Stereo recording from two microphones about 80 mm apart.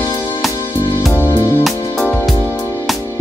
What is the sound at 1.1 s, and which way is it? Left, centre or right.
Music, left.